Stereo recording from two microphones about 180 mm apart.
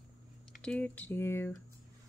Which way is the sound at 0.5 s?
5° left (ahead or behind).